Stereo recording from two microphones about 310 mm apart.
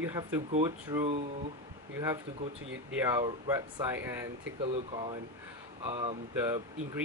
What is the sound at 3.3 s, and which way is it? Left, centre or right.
Speech, centre.